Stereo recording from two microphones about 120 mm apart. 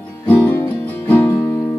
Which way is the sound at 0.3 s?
20° left (ahead or behind).